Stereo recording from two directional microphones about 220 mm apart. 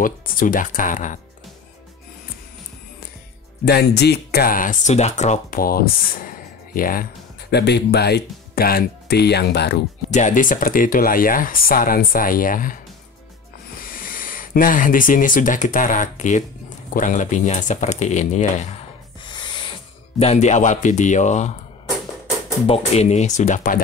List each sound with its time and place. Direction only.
0.0 s speech: 40° left (ahead or behind)
3.6 s speech: 50° left (ahead or behind)
10.1 s speech: 35° left (ahead or behind)
22.7 s speech: 30° left (ahead or behind)